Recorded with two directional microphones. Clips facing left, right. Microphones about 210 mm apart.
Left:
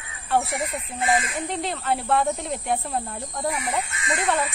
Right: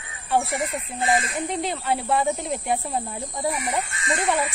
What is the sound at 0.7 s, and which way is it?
Speech, 30° right (ahead or behind).